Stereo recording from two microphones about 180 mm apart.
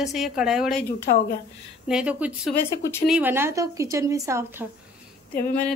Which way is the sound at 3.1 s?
10° right (ahead or behind).